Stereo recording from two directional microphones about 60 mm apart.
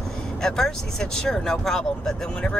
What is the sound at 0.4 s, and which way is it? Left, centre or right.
Speech, centre.